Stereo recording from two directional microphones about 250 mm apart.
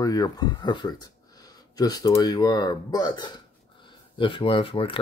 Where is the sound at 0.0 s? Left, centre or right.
Centre.